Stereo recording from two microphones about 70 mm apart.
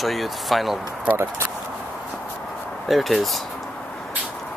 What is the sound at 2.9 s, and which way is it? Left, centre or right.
Speech, centre.